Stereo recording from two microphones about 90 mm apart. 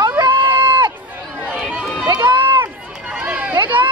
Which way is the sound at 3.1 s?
15° right (ahead or behind).